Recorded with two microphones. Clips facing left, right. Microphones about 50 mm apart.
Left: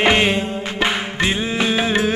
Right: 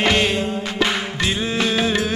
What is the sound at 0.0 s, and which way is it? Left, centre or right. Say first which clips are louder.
Music: left 2 dB; left.